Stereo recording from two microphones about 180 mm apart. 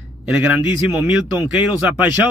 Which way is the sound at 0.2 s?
5° right (ahead or behind).